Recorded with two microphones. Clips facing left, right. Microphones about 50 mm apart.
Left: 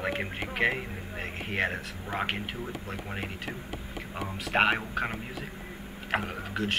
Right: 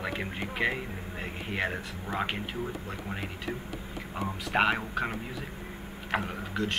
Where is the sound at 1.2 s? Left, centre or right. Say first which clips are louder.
Left 2 dB; centre.